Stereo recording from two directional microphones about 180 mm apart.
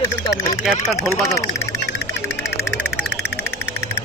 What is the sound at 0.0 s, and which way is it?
Speech, 15° left (ahead or behind).